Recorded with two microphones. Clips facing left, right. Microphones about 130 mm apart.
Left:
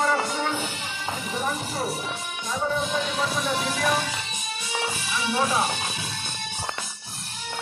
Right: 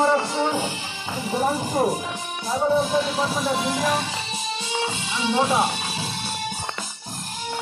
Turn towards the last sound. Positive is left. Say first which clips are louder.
# right 3 dB
turn(degrees=-25)  # may be behind; listen again after turning